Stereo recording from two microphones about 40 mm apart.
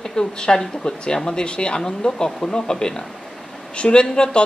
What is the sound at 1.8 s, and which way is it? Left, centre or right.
Speech, centre.